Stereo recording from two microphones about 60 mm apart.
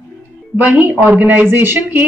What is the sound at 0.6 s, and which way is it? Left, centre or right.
Speech, right.